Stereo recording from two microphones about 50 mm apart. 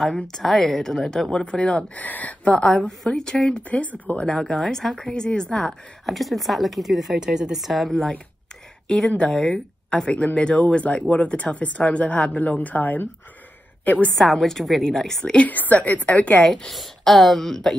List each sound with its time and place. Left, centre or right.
0.1 s a woman's voice: centre
1.3 s speech: left
3.1 s a woman's voice: centre
3.7 s a woman's voice: left
4.3 s a woman's voice: centre
5.6 s a woman's voice: centre
7.2 s a woman's voice: centre
8.8 s a woman's voice: centre
10.0 s a woman's voice: left
14.1 s a woman's voice: centre
15.4 s a woman's voice: left
16.4 s a woman's voice: centre